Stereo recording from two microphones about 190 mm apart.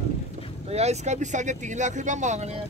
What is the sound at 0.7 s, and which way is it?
Speech, 35° right (ahead or behind).